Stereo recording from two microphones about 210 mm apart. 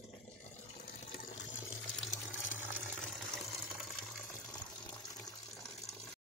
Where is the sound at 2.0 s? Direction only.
Centre (ahead or behind).